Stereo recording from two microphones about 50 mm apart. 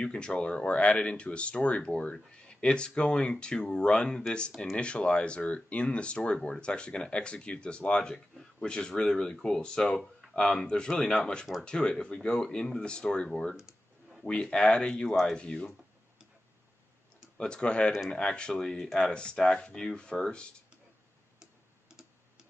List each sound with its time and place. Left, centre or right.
0.0 s speech: centre
17.4 s speech: centre
21.4 s tick-tock: centre